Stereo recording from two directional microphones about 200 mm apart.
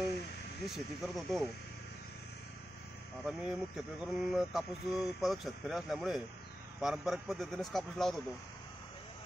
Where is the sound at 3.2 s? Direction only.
5° right (ahead or behind).